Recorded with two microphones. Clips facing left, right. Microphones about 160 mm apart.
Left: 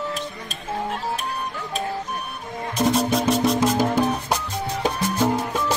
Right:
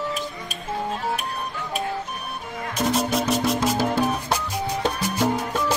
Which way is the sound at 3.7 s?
20° left (ahead or behind).